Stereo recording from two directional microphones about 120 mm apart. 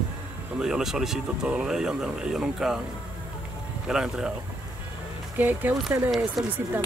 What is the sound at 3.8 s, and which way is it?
Speech, 5° right (ahead or behind).